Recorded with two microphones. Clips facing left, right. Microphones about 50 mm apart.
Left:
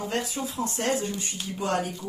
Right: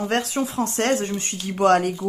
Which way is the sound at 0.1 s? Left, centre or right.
Right.